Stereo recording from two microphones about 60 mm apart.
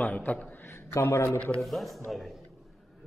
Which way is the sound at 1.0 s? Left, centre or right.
Left.